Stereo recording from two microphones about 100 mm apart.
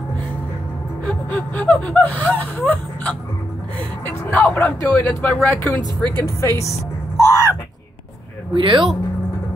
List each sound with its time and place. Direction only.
1.0 s speech: 15° left (ahead or behind)
2.6 s a sound: 15° left (ahead or behind)
4.0 s vehicle: 15° left (ahead or behind)
4.8 s speech: 20° left (ahead or behind)
6.2 s speech: 30° left (ahead or behind)
7.2 s a sound: 35° left (ahead or behind)
8.5 s speech: 55° right (ahead or behind)